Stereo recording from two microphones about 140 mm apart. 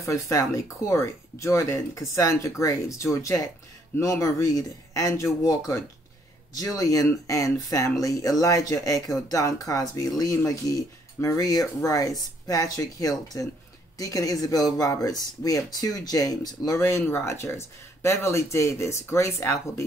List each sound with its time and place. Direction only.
0.0 s speech: 25° left (ahead or behind)